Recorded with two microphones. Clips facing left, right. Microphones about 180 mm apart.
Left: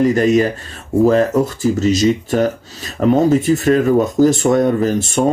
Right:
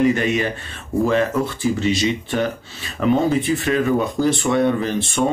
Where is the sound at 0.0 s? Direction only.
40° left (ahead or behind).